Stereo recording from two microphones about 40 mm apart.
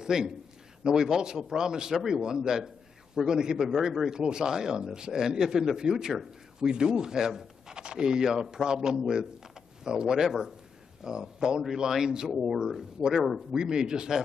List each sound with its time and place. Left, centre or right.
0.0 s a man's voice: centre
4.1 s speech: centre
13.1 s speech: centre
13.6 s speech: centre